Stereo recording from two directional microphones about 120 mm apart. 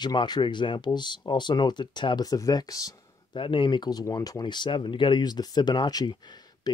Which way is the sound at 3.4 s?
45° left (ahead or behind).